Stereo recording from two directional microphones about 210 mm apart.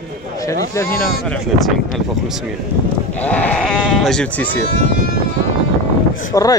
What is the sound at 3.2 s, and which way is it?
Speech, 5° left (ahead or behind).